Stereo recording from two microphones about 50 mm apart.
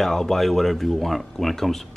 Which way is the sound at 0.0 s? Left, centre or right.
Centre.